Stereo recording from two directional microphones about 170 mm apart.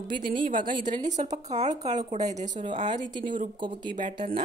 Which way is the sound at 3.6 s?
30° right (ahead or behind).